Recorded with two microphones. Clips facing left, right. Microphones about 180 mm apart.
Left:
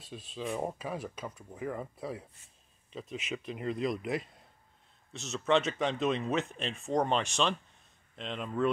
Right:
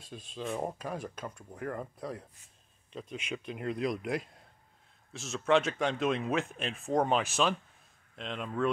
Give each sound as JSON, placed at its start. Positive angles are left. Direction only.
{"t": 0.0, "sound": "speech", "side_deg": 0}